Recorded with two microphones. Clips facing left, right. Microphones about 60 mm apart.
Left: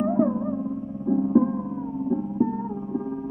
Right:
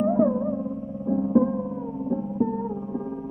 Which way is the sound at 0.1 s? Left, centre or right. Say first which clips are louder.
Right 1 dB; centre.